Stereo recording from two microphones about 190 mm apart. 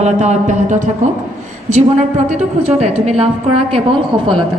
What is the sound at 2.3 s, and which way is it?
A woman's voice, 35° right (ahead or behind).